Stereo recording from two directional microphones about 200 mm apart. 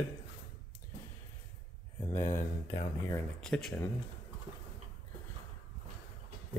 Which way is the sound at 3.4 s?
5° left (ahead or behind).